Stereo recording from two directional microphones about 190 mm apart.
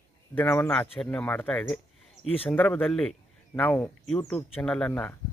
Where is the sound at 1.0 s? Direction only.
5° left (ahead or behind).